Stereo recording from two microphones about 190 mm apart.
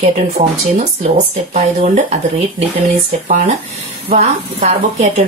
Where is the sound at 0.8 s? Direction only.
35° right (ahead or behind).